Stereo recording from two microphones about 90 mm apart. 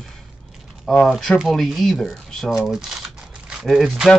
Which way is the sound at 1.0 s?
Centre (ahead or behind).